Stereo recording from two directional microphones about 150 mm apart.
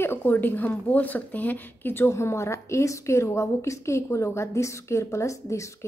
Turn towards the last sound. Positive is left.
turn(degrees=20)  # may be behind; listen again after turning